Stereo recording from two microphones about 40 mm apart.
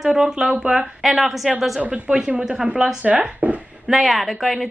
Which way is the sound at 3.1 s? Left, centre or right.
Right.